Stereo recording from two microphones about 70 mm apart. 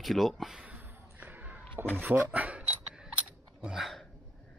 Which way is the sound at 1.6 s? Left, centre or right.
Left.